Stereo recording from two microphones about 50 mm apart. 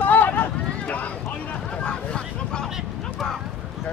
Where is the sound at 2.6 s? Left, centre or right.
Centre.